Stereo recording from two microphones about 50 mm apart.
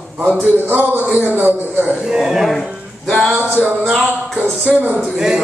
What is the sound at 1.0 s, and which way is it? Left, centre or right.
Speech, right.